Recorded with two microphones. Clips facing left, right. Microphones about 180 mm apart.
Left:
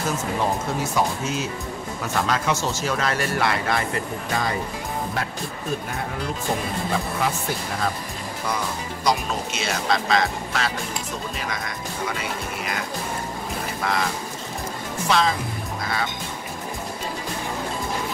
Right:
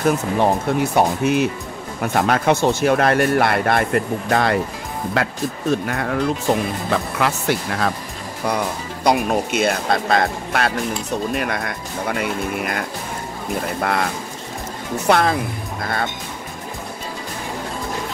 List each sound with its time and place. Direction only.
0.0 s speech: 60° right (ahead or behind)
5.1 s speech: 80° right
7.2 s speech: 80° right
8.4 s speech: 65° right (ahead or behind)